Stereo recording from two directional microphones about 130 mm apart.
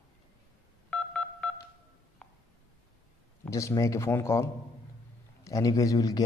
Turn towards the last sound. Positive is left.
turn(degrees=30)  # may be behind; listen again after turning